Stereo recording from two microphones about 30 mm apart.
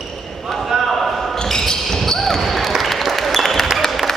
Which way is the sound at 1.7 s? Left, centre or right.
Left.